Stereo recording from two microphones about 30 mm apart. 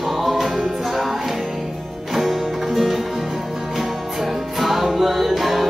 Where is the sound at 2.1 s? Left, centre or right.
Centre.